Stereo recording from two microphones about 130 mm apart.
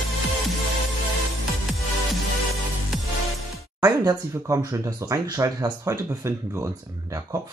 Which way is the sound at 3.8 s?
25° right (ahead or behind).